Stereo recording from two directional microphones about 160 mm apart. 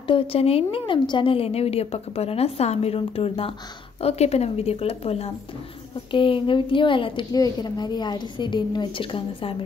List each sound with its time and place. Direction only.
0.0 s a woman's voice: 35° left (ahead or behind)